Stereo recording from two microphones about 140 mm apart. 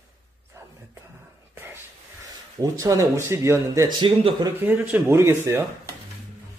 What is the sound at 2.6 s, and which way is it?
Speech, 25° right (ahead or behind).